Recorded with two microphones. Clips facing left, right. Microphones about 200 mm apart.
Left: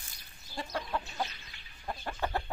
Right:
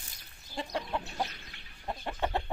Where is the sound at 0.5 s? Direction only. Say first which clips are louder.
Right 1 dB; 20° right (ahead or behind).